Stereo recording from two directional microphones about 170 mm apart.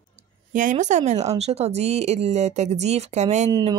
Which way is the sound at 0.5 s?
50° right (ahead or behind).